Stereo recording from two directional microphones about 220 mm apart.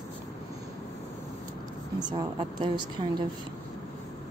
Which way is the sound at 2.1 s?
20° right (ahead or behind).